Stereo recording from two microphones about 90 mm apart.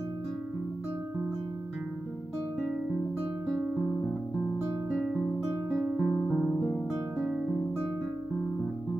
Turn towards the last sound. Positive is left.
turn(degrees=0)  # may be behind; listen again after turning